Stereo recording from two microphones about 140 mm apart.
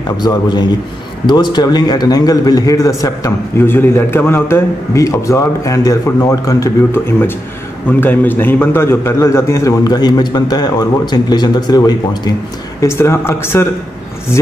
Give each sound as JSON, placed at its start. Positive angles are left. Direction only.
{"t": 0.2, "sound": "a man's voice", "side_deg": 30}